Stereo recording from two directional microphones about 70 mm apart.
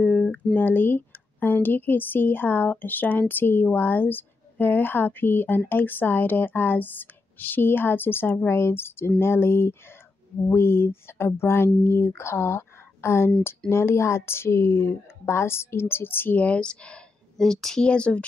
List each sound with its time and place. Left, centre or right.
0.0 s a sound: centre
0.6 s a woman's voice: left
16.4 s speech: centre